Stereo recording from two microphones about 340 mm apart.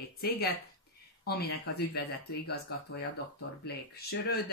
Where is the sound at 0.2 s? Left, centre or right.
Left.